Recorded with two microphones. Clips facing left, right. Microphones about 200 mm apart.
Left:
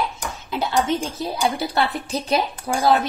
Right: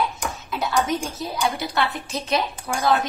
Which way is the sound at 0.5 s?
25° left (ahead or behind).